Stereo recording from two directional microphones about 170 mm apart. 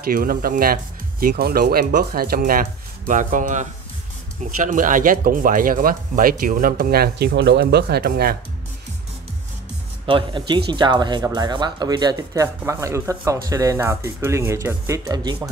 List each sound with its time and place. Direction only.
0.1 s speech: 60° right (ahead or behind)
10.0 s speech: 30° right (ahead or behind)